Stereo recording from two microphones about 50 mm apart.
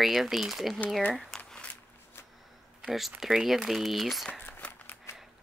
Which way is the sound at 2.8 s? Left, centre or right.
Centre.